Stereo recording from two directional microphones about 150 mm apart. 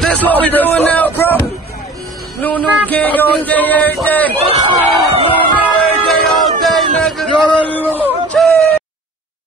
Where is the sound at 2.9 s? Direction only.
10° left (ahead or behind).